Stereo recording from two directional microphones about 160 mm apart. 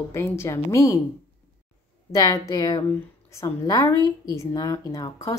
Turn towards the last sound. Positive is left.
turn(degrees=20)  # may be behind; listen again after turning